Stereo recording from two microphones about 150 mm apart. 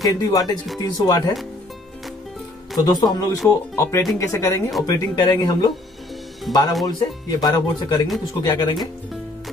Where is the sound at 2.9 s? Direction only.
25° left (ahead or behind).